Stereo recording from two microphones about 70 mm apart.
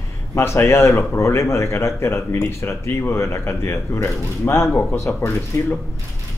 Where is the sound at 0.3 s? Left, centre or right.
Left.